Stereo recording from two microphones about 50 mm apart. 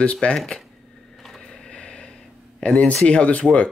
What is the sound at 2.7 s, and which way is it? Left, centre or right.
Speech, left.